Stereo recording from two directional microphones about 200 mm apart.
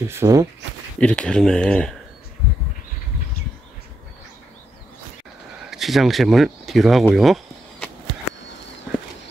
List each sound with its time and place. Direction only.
0.1 s speech: 15° right (ahead or behind)
0.9 s speech: 5° left (ahead or behind)
5.7 s speech: centre (ahead or behind)